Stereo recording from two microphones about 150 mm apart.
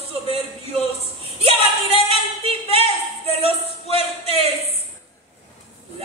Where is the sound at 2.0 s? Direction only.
40° right (ahead or behind).